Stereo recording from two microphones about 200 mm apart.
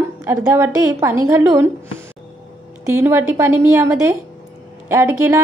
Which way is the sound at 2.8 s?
10° right (ahead or behind).